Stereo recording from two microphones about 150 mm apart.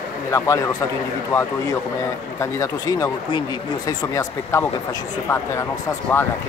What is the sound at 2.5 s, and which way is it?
Speech, 20° left (ahead or behind).